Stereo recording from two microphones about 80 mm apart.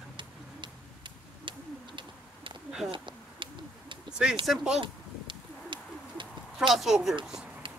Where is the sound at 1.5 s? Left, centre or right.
Right.